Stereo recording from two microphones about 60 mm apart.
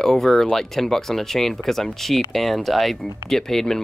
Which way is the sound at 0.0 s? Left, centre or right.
Centre.